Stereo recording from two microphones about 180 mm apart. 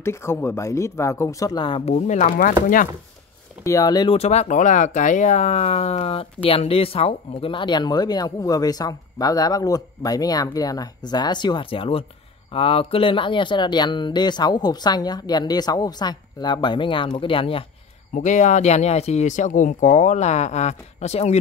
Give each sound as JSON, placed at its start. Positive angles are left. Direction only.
{"t": 0.0, "sound": "speech", "side_deg": 15}
{"t": 3.6, "sound": "speech", "side_deg": 20}
{"t": 18.1, "sound": "speech", "side_deg": 45}